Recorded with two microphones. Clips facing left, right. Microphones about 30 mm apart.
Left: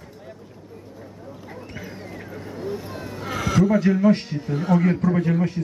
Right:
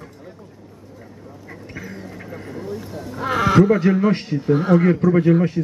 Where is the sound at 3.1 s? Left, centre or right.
Right.